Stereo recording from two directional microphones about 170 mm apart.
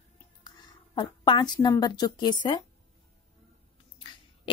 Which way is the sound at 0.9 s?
25° left (ahead or behind).